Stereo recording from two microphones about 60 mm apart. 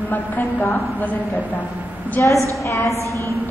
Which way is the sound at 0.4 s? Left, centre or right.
Left.